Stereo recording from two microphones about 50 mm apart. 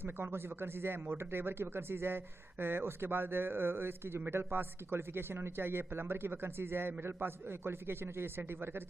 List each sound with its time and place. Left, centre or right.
0.0 s speech: right